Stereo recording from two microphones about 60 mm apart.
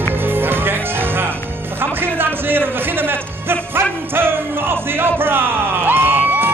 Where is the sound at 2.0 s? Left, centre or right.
Right.